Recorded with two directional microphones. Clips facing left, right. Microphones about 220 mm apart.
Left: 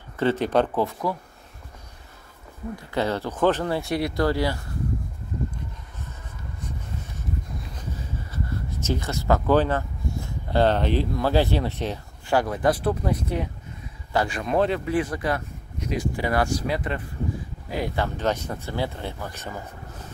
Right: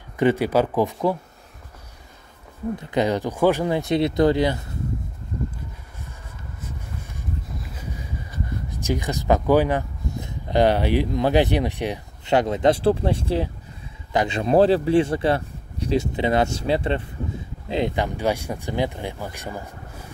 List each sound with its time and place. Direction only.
0.2 s speech: 10° right (ahead or behind)
2.7 s speech: 15° right (ahead or behind)
8.3 s speech: 15° right (ahead or behind)